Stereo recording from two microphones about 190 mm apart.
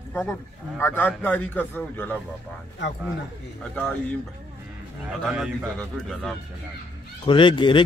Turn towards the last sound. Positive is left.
turn(degrees=25)  # may be behind; listen again after turning